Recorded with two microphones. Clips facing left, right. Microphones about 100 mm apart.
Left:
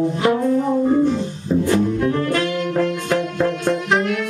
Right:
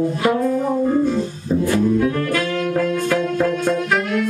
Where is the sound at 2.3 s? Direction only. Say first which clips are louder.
Even; 20° left (ahead or behind).